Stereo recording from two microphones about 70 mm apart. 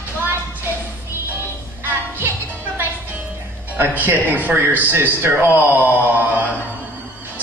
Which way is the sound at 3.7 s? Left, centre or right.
Right.